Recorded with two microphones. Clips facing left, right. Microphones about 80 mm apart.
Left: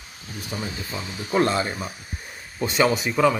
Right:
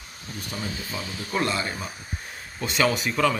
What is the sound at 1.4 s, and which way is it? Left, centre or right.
Speech, left.